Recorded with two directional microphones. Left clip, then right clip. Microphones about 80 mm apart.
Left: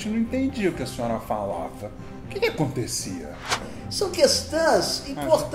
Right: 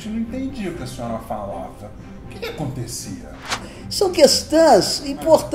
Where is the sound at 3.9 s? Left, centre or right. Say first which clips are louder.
Right 6 dB; right.